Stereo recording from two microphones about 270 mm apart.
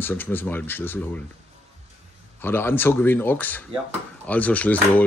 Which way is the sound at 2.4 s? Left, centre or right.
Centre.